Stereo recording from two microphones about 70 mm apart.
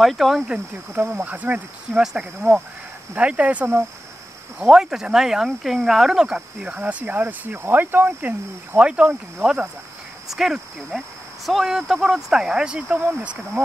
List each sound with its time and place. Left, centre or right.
0.0 s speech: centre
0.9 s speech: right
2.4 s speech: right
3.2 s speech: centre
4.6 s speech: centre